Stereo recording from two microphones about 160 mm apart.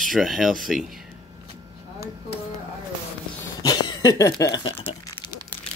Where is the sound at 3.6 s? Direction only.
25° left (ahead or behind).